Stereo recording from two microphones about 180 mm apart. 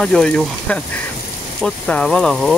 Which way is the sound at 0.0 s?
5° left (ahead or behind).